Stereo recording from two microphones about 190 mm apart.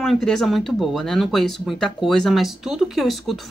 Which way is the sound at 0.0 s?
Centre (ahead or behind).